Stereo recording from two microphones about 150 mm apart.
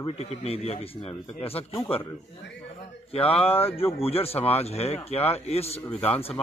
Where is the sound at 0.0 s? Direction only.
45° left (ahead or behind).